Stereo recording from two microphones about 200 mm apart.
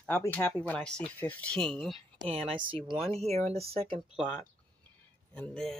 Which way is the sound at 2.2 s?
30° right (ahead or behind).